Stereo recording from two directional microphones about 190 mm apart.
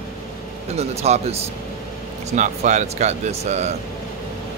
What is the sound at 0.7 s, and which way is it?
Speech, 35° right (ahead or behind).